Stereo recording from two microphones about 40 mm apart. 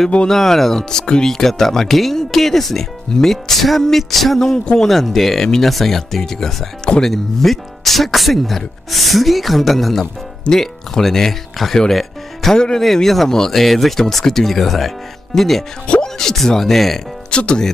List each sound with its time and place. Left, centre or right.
0.3 s speech: centre
11.9 s music: centre
12.5 s speech: left
12.8 s speech: centre
17.3 s speech: left